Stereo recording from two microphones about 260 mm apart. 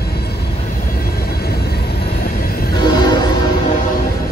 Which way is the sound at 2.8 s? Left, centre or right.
Centre.